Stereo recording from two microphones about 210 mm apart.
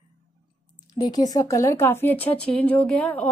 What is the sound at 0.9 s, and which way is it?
Speech, 20° left (ahead or behind).